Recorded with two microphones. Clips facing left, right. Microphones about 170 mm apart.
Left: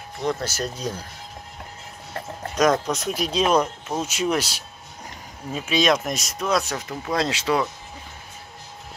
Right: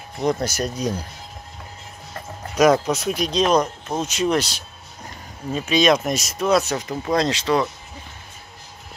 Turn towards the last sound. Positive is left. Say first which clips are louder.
# right 3 dB
turn(degrees=10)  # may be behind; listen again after turning